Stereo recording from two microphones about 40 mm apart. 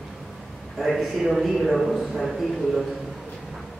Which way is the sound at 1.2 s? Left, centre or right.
Centre.